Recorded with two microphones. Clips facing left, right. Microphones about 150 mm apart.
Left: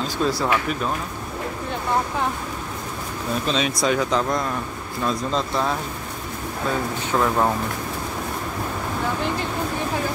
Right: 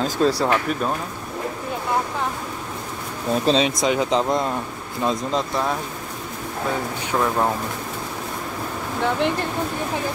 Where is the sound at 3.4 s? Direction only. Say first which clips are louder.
Right 3 dB; 30° right (ahead or behind).